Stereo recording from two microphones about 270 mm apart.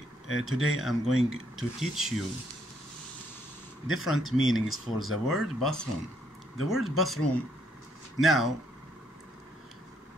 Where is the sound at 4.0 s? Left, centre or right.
Centre.